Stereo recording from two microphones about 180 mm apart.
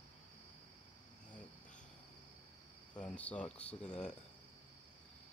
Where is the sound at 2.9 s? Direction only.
5° left (ahead or behind).